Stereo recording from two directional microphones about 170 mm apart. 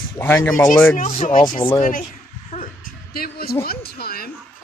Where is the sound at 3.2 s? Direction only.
65° left (ahead or behind).